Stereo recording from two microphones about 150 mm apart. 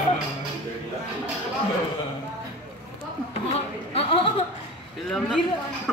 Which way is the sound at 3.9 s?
40° left (ahead or behind).